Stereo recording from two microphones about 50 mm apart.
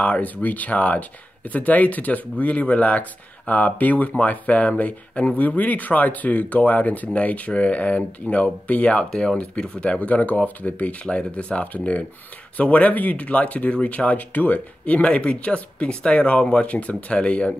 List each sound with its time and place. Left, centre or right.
0.0 s speech: left